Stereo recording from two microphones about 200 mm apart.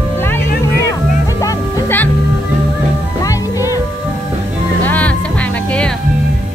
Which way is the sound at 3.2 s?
15° left (ahead or behind).